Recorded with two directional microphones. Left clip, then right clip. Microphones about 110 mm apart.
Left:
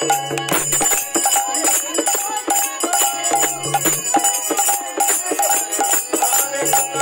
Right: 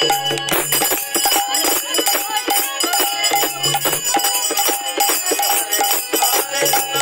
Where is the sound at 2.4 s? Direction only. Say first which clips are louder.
Right 1 dB; 90° left.